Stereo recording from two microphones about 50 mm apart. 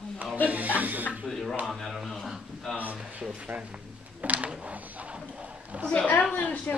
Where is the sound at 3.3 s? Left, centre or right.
Right.